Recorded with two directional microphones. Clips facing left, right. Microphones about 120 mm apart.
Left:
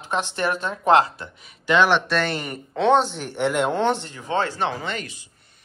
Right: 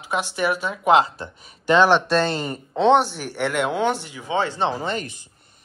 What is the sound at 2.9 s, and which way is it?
Speech, 10° right (ahead or behind).